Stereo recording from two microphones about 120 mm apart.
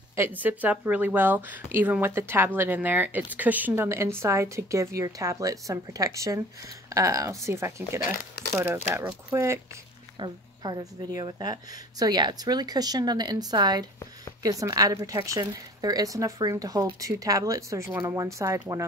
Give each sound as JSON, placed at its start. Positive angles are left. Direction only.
{"t": 0.1, "sound": "speech", "side_deg": -15}
{"t": 10.1, "sound": "speech", "side_deg": -40}